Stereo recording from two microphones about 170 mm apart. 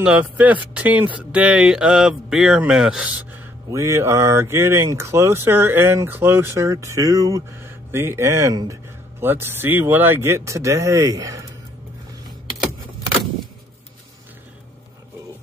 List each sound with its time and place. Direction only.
0.0 s speech: 10° right (ahead or behind)